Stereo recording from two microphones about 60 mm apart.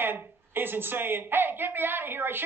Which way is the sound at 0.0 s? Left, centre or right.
Right.